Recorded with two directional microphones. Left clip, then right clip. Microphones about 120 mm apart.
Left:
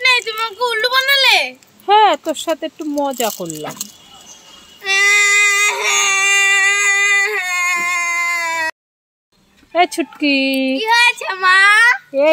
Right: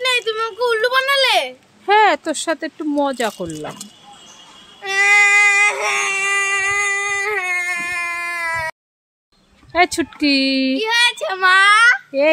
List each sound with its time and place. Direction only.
0.2 s a sound: 25° right (ahead or behind)
1.9 s speech: 5° right (ahead or behind)
2.9 s a child's voice: 20° right (ahead or behind)
4.8 s baby cry: 30° right (ahead or behind)
9.7 s speech: 10° right (ahead or behind)
10.8 s a child's voice: 25° right (ahead or behind)